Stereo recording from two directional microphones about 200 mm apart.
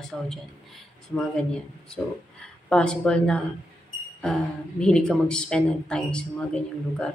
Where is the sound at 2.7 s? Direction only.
5° left (ahead or behind).